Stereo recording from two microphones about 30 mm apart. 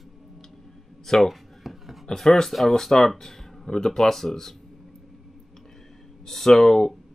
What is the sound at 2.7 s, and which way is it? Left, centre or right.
Speech, centre.